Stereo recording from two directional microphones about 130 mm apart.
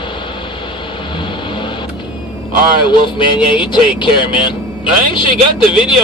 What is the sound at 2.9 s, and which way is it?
Speech, 35° left (ahead or behind).